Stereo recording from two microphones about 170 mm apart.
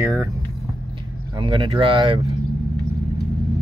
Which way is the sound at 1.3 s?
30° right (ahead or behind).